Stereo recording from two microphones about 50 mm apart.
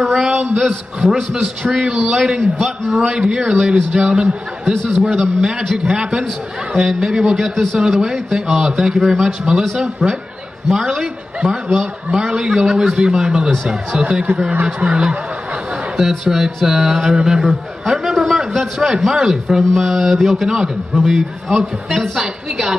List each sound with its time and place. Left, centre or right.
0.0 s a sound: centre
0.6 s a man's voice: centre
3.0 s a man's voice: centre
3.9 s a man's voice: right
5.4 s a man's voice: centre